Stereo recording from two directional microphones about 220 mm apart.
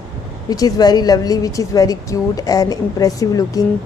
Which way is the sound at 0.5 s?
15° left (ahead or behind).